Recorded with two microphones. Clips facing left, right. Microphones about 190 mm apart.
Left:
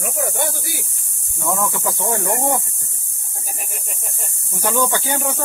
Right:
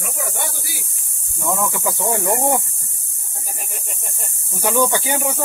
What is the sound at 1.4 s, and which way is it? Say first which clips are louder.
Speech: even; 5° right (ahead or behind).